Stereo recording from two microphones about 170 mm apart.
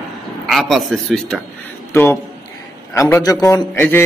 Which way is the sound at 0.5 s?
Centre (ahead or behind).